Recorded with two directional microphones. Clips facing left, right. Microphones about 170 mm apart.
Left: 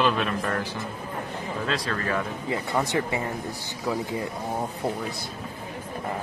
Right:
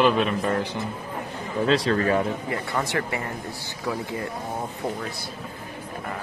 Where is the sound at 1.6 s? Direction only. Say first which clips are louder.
Right 9 dB; 30° right (ahead or behind).